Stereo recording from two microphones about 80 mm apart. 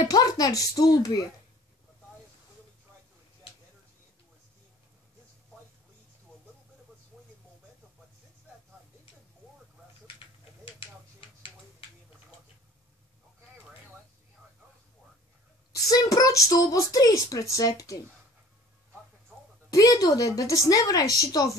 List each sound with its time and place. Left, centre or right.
0.1 s speech: left
10.2 s a sound: left
15.7 s speech: left
19.7 s speech: left